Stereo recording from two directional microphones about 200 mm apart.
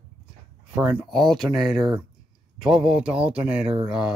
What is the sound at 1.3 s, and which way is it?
Speech, centre (ahead or behind).